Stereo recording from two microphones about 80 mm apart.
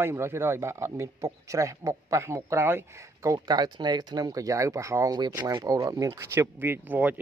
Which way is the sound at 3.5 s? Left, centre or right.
Right.